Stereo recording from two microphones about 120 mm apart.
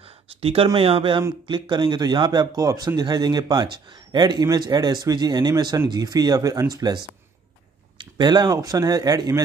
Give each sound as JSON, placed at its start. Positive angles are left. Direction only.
{"t": 0.0, "sound": "a sound", "side_deg": -55}
{"t": 0.7, "sound": "speech", "side_deg": -50}
{"t": 8.0, "sound": "speech", "side_deg": -40}